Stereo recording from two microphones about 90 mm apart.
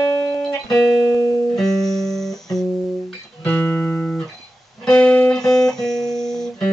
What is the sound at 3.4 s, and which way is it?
Music, 15° left (ahead or behind).